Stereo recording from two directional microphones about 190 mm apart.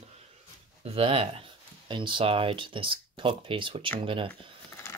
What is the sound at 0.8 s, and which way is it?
Speech, 30° right (ahead or behind).